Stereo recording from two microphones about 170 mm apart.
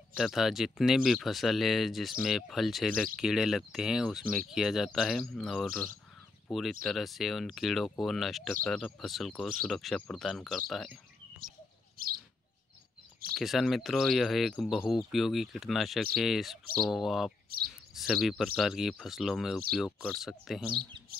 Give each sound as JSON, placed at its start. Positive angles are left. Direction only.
{"t": 0.2, "sound": "speech", "side_deg": 0}
{"t": 11.4, "sound": "bird", "side_deg": -55}
{"t": 13.3, "sound": "speech", "side_deg": 0}